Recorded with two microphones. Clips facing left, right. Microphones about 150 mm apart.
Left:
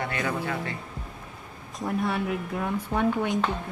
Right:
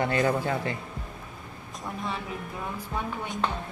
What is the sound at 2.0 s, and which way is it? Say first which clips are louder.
A woman's voice: left 6 dB; 65° left (ahead or behind).